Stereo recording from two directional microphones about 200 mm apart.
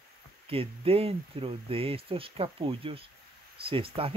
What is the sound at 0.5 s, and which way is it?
Speech, 30° right (ahead or behind).